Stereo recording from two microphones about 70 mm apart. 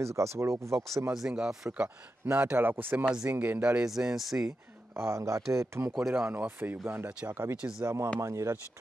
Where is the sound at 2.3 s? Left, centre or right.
Right; by 4.5 s centre.